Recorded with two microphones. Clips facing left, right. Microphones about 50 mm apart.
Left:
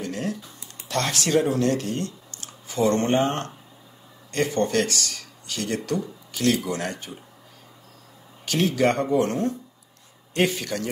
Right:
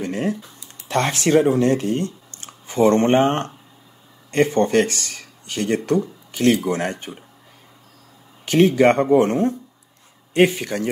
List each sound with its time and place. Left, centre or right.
0.0 s speech: right
8.5 s speech: right